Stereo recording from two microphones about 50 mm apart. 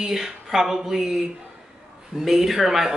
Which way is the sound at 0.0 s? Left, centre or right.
Centre.